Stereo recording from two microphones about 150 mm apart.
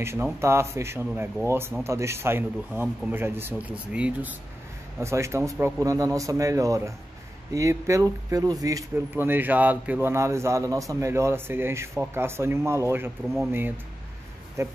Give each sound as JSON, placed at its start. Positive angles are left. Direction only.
{"t": 0.0, "sound": "speech", "side_deg": -15}
{"t": 8.9, "sound": "speech", "side_deg": -15}